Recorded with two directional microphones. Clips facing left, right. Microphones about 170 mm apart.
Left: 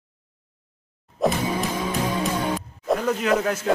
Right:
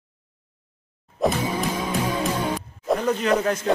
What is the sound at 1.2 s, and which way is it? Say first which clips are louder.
Music: even; centre (ahead or behind).